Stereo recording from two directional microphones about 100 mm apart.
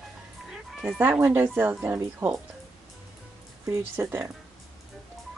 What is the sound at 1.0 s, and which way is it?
A woman's voice, 20° right (ahead or behind).